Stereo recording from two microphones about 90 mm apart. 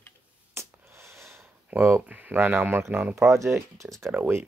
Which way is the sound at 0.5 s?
30° right (ahead or behind).